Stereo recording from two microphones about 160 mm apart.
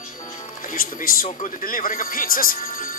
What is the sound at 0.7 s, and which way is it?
A man's voice, 55° left (ahead or behind).